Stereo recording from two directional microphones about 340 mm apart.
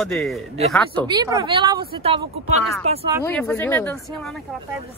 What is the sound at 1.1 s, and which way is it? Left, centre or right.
A woman's voice, centre.